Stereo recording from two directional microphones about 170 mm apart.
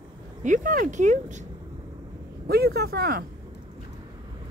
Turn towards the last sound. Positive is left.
turn(degrees=-65)  # may be behind; listen again after turning